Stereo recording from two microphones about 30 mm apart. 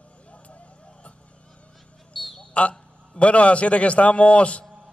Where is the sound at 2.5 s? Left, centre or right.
Left.